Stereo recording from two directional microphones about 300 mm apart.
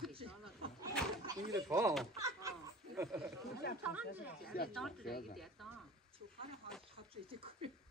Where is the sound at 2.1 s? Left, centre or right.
Centre.